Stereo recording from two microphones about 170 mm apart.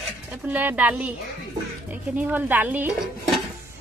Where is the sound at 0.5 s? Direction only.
10° right (ahead or behind).